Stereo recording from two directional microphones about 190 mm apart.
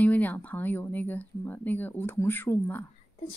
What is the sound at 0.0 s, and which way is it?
Speech, 10° left (ahead or behind).